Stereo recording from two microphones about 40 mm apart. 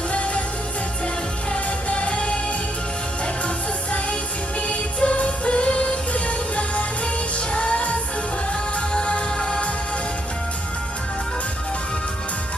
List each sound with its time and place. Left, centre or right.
1.5 s music: left
4.6 s music: left
8.9 s music: left